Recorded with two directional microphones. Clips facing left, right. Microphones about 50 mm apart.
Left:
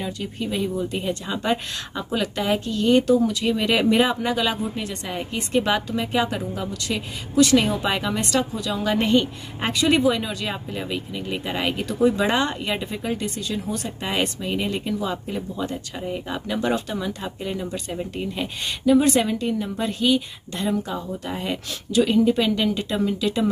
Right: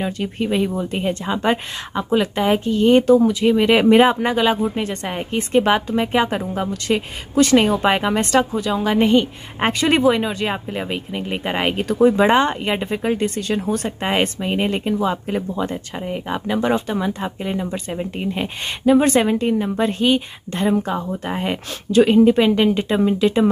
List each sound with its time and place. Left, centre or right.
0.0 s speech: right
8.8 s a woman's voice: centre
9.6 s speech: right
16.0 s speech: right